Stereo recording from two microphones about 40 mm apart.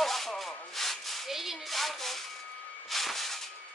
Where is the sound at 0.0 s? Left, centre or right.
Centre.